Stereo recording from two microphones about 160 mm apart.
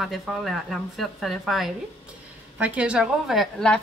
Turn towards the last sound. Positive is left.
turn(degrees=0)  # may be behind; listen again after turning